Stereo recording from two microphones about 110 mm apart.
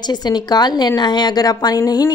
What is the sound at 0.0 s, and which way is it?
A woman's voice, 40° left (ahead or behind).